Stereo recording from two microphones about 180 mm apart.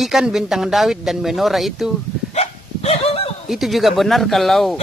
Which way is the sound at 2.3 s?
35° left (ahead or behind).